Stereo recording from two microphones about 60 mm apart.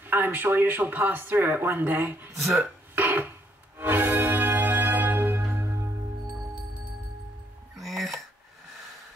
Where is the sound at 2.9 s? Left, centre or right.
Right.